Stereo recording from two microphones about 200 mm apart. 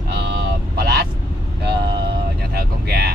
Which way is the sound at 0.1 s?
55° right (ahead or behind).